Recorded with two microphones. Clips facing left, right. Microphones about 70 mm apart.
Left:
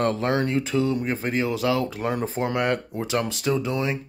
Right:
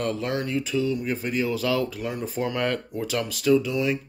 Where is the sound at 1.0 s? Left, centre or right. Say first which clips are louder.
Left 1 dB; left.